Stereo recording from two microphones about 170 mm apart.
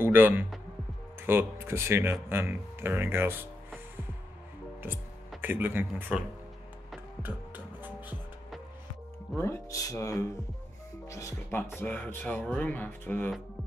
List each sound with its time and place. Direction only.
0.0 s speech: 10° right (ahead or behind)
5.4 s speech: 10° right (ahead or behind)
7.2 s music: 10° right (ahead or behind)
9.3 s speech: 15° left (ahead or behind)